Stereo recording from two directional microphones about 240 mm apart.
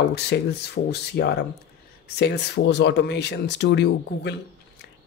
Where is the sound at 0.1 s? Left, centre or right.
Left.